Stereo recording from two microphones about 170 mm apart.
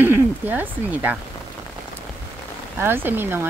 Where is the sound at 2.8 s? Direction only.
10° right (ahead or behind).